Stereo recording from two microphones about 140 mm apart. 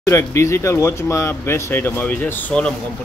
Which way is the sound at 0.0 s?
20° left (ahead or behind).